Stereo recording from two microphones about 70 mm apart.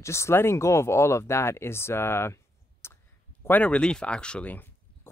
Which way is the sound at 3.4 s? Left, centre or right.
Left.